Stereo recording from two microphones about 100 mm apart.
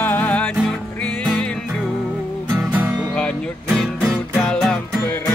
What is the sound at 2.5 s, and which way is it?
Music, 15° right (ahead or behind).